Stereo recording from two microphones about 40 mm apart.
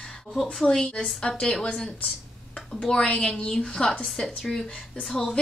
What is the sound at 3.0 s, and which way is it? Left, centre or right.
A woman's voice, left.